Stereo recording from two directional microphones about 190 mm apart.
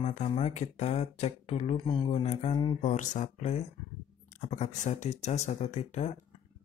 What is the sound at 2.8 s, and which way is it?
Speech, 40° left (ahead or behind).